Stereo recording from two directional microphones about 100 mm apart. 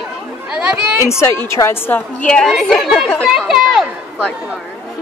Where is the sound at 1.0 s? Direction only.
25° left (ahead or behind).